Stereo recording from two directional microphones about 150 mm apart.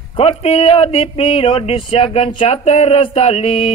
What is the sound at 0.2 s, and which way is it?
Speech, 40° left (ahead or behind).